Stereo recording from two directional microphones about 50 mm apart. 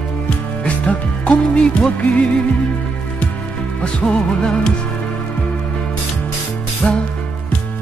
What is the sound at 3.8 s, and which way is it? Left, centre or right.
Music, left.